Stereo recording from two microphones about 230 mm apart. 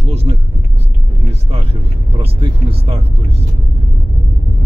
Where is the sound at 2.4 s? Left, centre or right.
Right.